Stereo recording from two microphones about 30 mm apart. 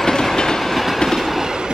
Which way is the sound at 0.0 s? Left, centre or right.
Centre.